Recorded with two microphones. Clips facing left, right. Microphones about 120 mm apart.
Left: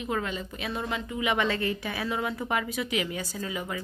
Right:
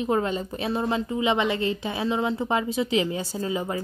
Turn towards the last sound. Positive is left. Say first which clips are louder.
# right 6 dB
turn(degrees=-30)  # may be behind; listen again after turning